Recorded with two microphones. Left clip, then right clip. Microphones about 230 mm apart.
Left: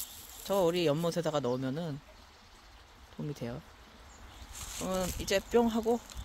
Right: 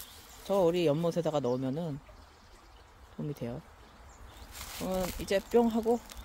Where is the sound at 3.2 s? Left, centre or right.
Centre.